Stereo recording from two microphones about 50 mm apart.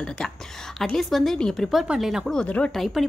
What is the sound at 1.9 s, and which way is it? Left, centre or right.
Speech, right.